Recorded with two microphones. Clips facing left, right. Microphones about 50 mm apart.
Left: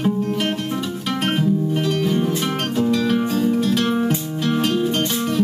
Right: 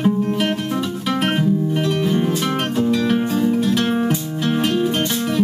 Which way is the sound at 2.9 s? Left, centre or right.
Centre.